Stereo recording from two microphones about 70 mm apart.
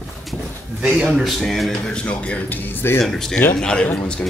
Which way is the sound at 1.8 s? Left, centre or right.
Centre.